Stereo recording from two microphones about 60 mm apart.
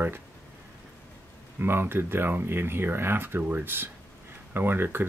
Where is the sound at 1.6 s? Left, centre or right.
Right.